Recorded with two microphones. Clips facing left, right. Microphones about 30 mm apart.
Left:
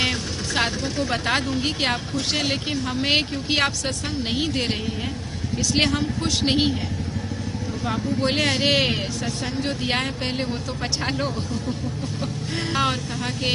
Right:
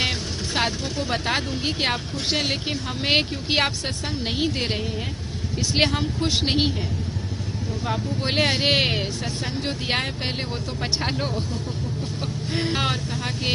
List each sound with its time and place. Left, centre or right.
1.1 s speech: centre
5.8 s speech: centre
8.2 s speech: centre